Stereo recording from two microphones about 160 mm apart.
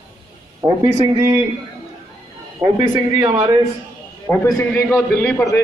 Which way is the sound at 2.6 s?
25° right (ahead or behind).